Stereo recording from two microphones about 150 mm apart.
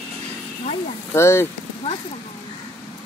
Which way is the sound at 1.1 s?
15° left (ahead or behind).